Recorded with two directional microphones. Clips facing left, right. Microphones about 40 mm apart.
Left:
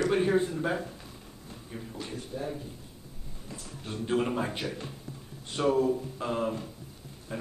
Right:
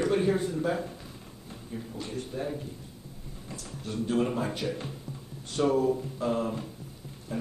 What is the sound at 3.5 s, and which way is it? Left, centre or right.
A man's voice, left.